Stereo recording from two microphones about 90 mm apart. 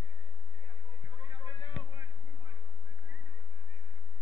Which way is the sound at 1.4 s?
50° left (ahead or behind).